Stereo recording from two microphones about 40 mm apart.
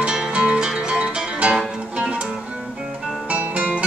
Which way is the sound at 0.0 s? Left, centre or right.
Centre.